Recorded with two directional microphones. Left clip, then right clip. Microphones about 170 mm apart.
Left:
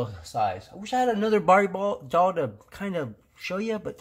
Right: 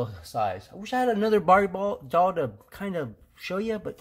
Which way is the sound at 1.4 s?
Centre (ahead or behind).